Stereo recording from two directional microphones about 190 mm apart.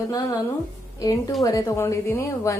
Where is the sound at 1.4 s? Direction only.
20° left (ahead or behind).